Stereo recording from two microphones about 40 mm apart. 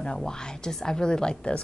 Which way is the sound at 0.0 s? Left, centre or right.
Centre.